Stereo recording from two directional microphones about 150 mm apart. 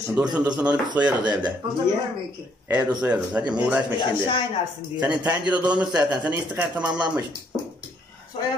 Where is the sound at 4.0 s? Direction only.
35° left (ahead or behind).